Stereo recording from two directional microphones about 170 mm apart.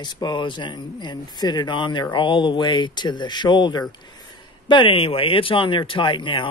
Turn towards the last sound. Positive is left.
turn(degrees=30)  # may be behind; listen again after turning